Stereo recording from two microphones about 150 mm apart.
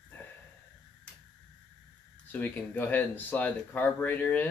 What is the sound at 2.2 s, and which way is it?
Speech, 10° left (ahead or behind).